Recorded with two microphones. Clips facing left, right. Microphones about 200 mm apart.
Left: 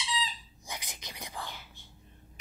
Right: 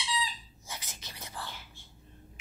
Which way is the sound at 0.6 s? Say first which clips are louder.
Left 3 dB; 15° left (ahead or behind).